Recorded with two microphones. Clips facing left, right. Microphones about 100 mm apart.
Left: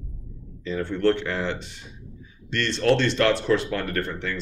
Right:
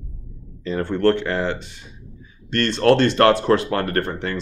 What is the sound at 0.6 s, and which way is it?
A man's voice, 55° right (ahead or behind).